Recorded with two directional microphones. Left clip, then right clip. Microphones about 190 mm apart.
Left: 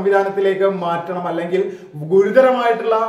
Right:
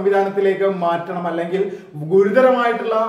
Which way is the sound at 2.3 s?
15° left (ahead or behind).